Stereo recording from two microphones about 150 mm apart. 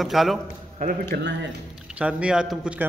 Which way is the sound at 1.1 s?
90° right.